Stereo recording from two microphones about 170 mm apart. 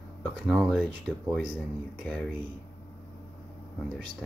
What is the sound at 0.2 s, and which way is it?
Speech, 5° left (ahead or behind).